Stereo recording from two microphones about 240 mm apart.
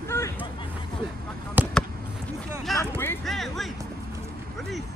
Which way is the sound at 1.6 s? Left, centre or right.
Centre.